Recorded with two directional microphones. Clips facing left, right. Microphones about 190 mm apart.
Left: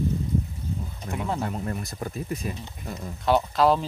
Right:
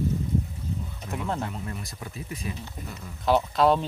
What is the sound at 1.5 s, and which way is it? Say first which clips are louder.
Speech: left 5 dB; 45° left (ahead or behind).